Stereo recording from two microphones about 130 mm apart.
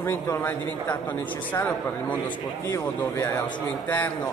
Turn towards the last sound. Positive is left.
turn(degrees=10)  # may be behind; listen again after turning